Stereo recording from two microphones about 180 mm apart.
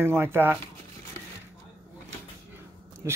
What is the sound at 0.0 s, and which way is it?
Speech, 15° right (ahead or behind).